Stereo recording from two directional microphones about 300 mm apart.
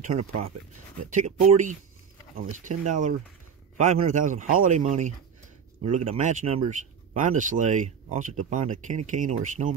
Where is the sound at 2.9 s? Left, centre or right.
Right.